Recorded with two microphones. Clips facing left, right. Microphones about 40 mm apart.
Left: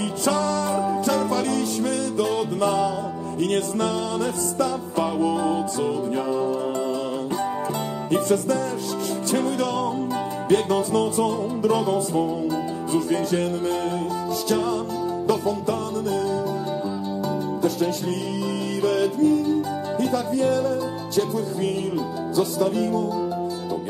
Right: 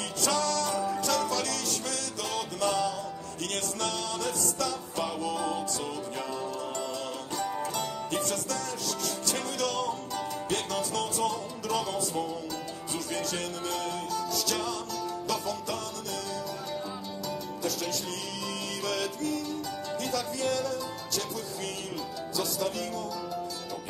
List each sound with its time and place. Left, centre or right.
0.2 s music: left
8.1 s music: left
17.6 s music: left
22.3 s music: left